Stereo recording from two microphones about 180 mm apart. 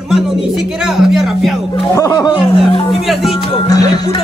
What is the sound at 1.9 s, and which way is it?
Speech, 20° left (ahead or behind).